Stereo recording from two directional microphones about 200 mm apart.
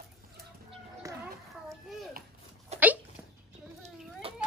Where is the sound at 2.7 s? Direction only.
35° right (ahead or behind).